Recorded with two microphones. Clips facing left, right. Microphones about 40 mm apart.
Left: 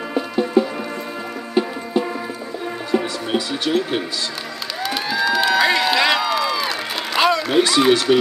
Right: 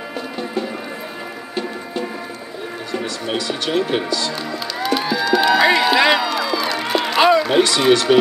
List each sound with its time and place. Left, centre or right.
0.1 s music: centre
3.4 s speech: centre
4.7 s run: centre
6.2 s a sound: centre
7.6 s speech: centre